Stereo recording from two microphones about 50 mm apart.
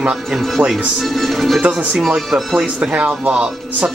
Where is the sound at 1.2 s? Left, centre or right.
Centre.